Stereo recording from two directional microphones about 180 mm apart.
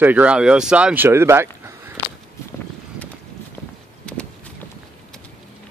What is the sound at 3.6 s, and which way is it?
Walk, 15° left (ahead or behind).